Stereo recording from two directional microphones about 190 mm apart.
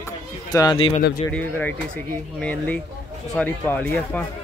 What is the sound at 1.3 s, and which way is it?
Speech, 10° left (ahead or behind).